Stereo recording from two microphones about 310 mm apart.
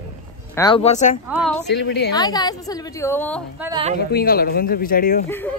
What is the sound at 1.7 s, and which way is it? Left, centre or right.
Speech, left.